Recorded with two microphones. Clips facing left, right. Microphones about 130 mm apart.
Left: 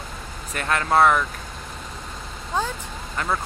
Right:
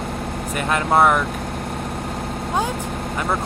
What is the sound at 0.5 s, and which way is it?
Speech, 15° right (ahead or behind).